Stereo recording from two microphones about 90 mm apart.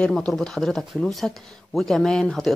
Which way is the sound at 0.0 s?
10° left (ahead or behind).